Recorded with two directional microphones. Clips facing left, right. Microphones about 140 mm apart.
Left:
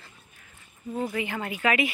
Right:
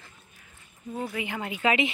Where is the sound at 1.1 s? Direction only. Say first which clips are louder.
Left 2 dB; 15° right (ahead or behind).